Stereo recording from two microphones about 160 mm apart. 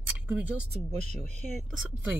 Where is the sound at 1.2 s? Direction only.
45° right (ahead or behind).